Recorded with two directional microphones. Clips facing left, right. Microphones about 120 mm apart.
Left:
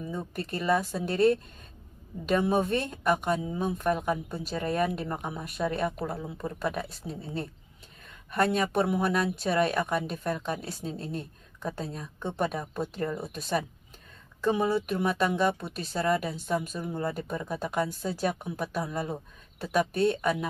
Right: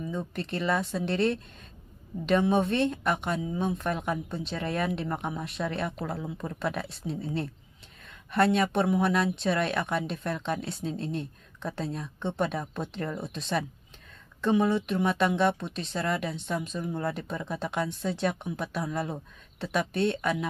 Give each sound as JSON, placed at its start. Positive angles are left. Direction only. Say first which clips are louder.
{"t": 0.1, "sound": "speech", "louder": "even", "side_deg": 5}